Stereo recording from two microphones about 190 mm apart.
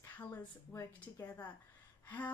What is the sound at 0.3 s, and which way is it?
A woman's voice, 10° left (ahead or behind).